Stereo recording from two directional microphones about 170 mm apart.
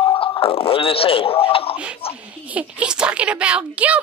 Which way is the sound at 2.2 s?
10° right (ahead or behind).